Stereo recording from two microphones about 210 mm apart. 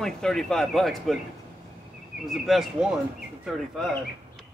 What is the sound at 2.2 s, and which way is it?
Speech, centre (ahead or behind).